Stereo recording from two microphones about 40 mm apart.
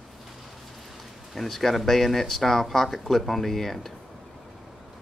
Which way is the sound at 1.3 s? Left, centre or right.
Centre.